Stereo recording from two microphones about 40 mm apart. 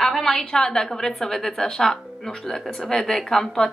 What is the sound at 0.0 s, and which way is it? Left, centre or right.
A woman's voice, centre.